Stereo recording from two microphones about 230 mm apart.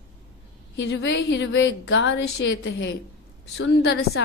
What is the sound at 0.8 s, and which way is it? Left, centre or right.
A woman's voice, left.